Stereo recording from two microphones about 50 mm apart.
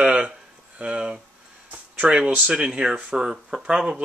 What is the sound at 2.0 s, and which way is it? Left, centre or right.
Speech, centre.